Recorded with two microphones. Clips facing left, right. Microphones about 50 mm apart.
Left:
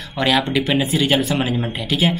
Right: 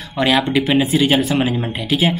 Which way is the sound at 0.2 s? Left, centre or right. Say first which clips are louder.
Right 2 dB; centre.